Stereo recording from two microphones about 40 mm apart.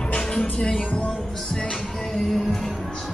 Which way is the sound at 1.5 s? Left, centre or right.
Left.